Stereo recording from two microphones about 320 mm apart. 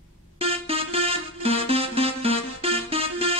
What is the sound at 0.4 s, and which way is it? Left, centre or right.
Music, centre.